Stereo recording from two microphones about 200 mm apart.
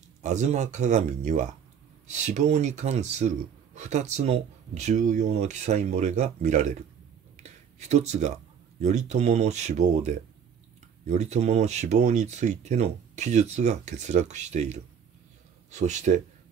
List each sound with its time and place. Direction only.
0.2 s speech: 35° right (ahead or behind)